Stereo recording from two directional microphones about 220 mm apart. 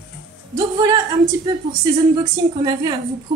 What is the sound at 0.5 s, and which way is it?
A woman's voice, 15° right (ahead or behind).